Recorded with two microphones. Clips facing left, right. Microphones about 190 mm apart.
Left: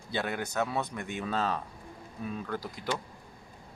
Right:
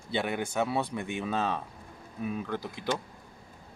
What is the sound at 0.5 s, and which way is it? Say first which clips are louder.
Speech: right 2 dB; 10° right (ahead or behind).